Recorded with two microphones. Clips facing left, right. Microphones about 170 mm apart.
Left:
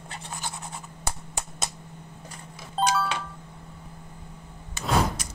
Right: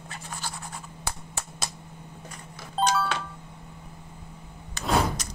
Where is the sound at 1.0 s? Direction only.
25° left (ahead or behind).